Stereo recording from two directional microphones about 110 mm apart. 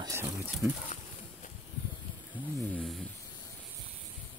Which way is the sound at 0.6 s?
20° right (ahead or behind).